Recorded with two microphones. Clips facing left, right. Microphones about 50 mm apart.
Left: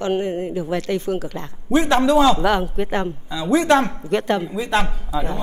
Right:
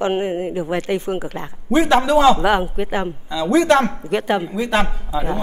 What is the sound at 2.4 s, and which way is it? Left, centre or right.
Speech, centre.